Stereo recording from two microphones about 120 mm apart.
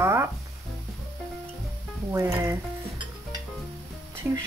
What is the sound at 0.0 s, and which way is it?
Music, 20° right (ahead or behind).